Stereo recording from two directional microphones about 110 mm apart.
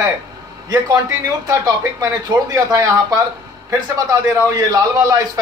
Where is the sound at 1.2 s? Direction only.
35° right (ahead or behind).